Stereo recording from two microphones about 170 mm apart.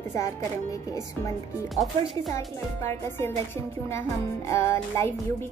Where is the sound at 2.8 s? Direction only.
15° left (ahead or behind).